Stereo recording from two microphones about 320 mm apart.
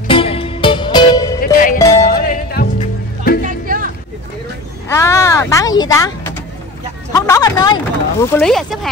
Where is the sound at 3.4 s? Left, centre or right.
Right.